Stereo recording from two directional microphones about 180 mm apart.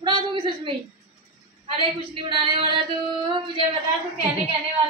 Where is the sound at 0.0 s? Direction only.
25° right (ahead or behind).